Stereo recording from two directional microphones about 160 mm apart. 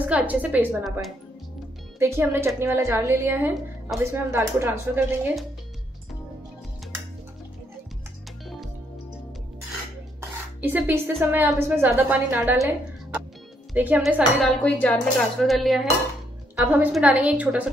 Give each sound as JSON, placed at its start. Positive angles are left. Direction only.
{"t": 0.0, "sound": "a woman's voice", "side_deg": -10}
{"t": 2.0, "sound": "a woman's voice", "side_deg": -15}
{"t": 10.6, "sound": "a woman's voice", "side_deg": -10}
{"t": 13.7, "sound": "a woman's voice", "side_deg": -10}